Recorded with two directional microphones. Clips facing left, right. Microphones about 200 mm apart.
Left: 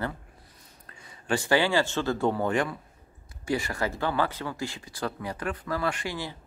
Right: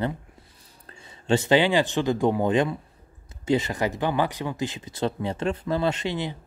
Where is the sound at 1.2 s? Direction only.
20° right (ahead or behind).